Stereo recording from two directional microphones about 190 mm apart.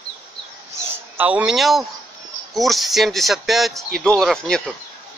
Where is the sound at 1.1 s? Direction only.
10° right (ahead or behind).